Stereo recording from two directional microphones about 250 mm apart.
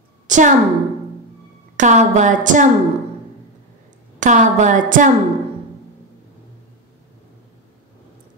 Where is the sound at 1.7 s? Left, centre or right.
Right.